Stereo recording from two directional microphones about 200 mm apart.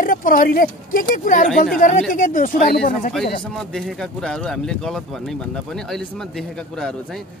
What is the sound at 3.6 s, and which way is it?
Speech, centre (ahead or behind).